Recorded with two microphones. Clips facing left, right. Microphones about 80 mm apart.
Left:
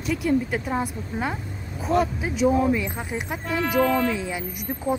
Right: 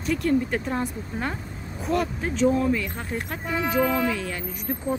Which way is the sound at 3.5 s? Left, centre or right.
Centre.